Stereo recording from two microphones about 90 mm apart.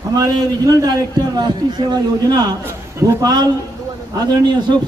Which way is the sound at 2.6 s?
35° right (ahead or behind).